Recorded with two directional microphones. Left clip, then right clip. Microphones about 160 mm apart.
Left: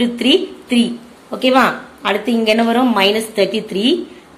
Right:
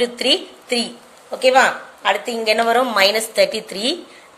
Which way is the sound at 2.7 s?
40° right (ahead or behind).